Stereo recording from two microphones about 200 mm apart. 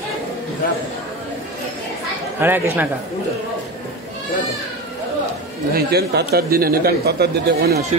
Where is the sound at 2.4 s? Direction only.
10° right (ahead or behind).